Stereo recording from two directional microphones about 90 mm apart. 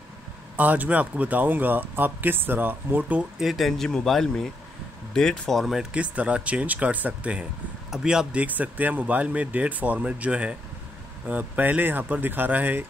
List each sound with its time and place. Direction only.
0.6 s speech: 15° right (ahead or behind)
3.3 s speech: centre (ahead or behind)
5.9 s speech: 15° right (ahead or behind)